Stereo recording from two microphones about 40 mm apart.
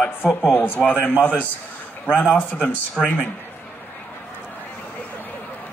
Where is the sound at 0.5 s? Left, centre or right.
Left.